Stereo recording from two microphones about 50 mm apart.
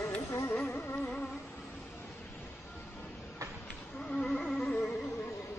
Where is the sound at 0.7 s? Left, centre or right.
Left.